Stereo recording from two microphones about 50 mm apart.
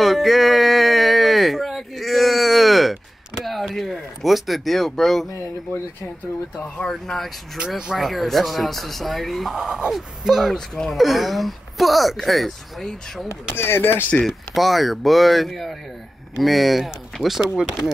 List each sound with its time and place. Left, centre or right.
0.0 s a sound: centre
6.8 s speech: centre
7.5 s speech: centre
8.0 s speech: centre
13.6 s speech: left
14.2 s speech: centre